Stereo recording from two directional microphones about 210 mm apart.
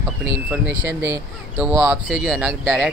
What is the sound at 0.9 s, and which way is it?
Speech, 10° right (ahead or behind).